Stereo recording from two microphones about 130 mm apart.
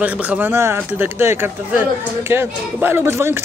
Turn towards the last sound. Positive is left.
turn(degrees=-20)  # may be behind; listen again after turning